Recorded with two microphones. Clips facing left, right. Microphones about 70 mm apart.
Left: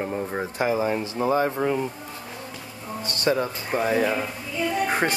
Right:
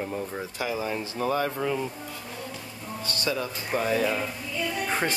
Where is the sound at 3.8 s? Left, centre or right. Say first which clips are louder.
Left 3 dB; left.